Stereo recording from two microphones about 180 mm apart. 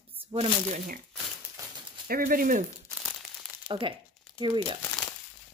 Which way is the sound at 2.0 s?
55° right (ahead or behind).